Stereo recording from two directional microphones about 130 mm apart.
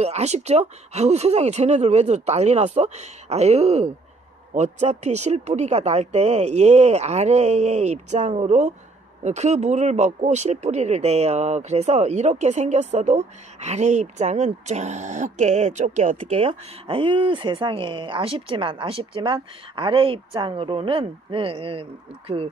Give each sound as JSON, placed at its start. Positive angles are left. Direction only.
{"t": 0.0, "sound": "speech", "side_deg": -55}